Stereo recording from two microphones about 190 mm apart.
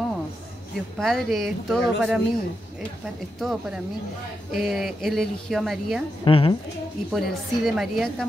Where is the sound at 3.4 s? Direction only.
Centre (ahead or behind).